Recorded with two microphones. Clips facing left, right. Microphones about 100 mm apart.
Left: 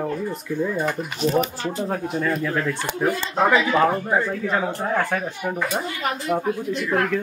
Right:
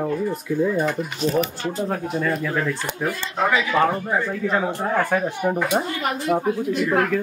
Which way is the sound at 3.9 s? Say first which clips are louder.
Left 2 dB; 15° left (ahead or behind).